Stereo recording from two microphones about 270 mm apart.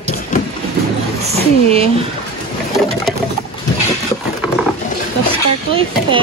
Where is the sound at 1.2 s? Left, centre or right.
Right.